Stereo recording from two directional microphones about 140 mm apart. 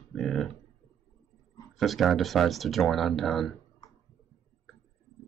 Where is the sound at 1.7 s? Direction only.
Centre (ahead or behind).